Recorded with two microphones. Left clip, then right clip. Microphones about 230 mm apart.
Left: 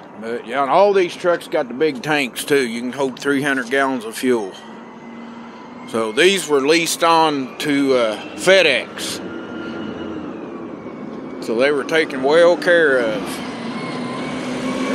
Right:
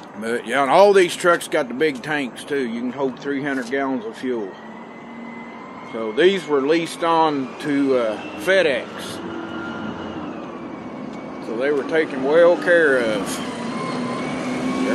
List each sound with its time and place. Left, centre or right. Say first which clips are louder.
0.2 s speech: right 1 dB; centre
2.0 s speech: left 6 dB; left
5.9 s speech: left 3 dB; left
11.5 s speech: left 4 dB; left
13.1 s vehicle: even; centre
14.5 s vehicle: left 2 dB; centre